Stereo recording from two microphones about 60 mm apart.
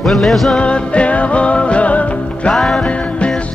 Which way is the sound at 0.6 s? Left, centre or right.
Centre.